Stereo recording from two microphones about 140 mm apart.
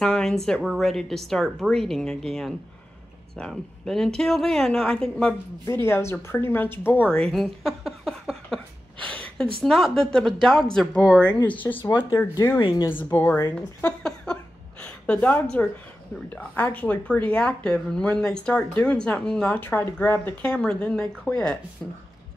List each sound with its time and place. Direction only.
0.0 s speech: 5° left (ahead or behind)
5.7 s speech: 15° left (ahead or behind); by 8.5 s centre (ahead or behind)
9.0 s a sound: 10° left (ahead or behind)
9.6 s speech: centre (ahead or behind); by 12.5 s 15° left (ahead or behind)
12.5 s speech: 35° left (ahead or behind)
12.8 s speech: 15° left (ahead or behind)